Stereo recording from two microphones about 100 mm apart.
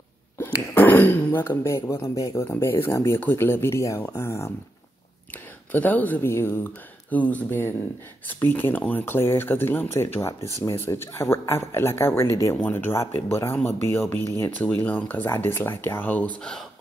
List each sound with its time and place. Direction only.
0.4 s speech: 20° left (ahead or behind)
5.7 s speech: 15° left (ahead or behind)